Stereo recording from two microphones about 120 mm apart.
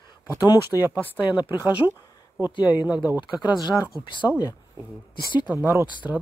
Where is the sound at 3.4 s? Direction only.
35° left (ahead or behind).